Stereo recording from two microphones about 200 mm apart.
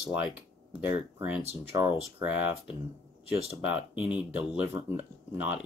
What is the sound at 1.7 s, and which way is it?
Speech, 10° right (ahead or behind).